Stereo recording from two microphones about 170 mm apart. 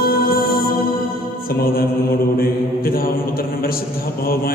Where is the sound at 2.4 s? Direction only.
60° left (ahead or behind).